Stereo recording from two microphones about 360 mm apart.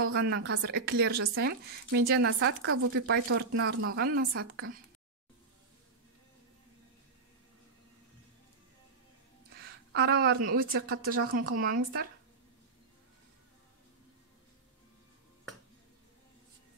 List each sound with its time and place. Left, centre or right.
0.0 s a woman's voice: right
9.6 s a sound: right
10.4 s a woman's voice: right